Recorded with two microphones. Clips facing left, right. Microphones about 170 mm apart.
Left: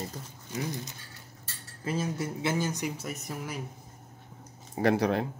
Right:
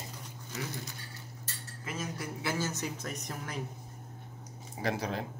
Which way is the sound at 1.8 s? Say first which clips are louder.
Left 7 dB; 30° left (ahead or behind).